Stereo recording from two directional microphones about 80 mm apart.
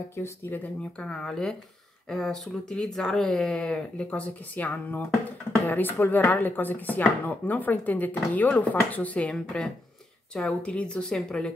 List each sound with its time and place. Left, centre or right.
0.1 s speech: left
0.9 s speech: centre